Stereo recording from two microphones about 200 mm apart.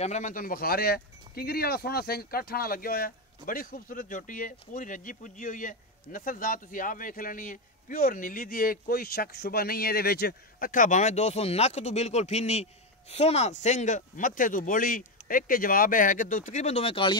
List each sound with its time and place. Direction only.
0.0 s speech: 35° left (ahead or behind)